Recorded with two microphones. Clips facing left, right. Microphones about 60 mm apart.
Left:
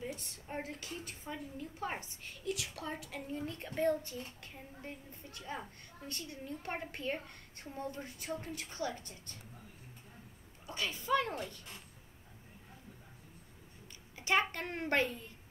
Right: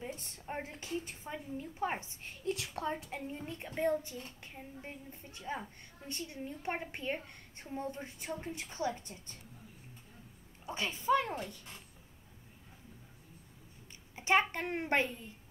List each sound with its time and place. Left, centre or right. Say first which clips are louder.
0.0 s a sound: left 1 dB; right
0.5 s a woman's voice: right 2 dB; right
2.2 s a woman's voice: right 2 dB; right
10.7 s a woman's voice: right 3 dB; right
14.1 s a sound: right 3 dB; right
14.4 s a child's voice: right 2 dB; centre